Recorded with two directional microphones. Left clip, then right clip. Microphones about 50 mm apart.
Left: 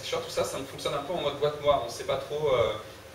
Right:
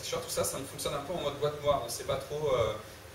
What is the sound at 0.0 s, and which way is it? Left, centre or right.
Speech, centre.